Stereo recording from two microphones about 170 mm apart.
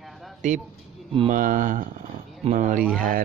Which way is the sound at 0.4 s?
45° right (ahead or behind).